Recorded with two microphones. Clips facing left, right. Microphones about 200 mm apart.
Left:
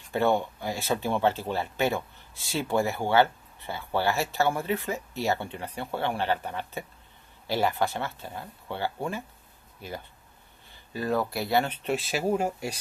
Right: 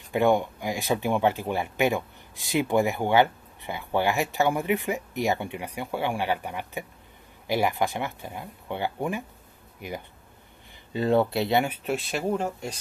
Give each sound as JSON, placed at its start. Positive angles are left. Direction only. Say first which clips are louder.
{"t": 0.1, "sound": "speech", "louder": "right 3 dB", "side_deg": -15}
{"t": 11.6, "sound": "speech", "louder": "right 1 dB", "side_deg": -5}